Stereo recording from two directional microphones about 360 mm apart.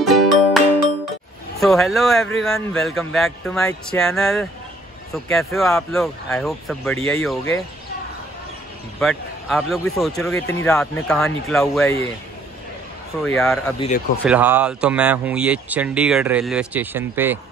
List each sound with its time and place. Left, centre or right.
0.0 s music: centre
1.6 s speech: centre
9.0 s speech: centre
13.2 s speech: centre
13.7 s speech: centre
14.2 s speech: centre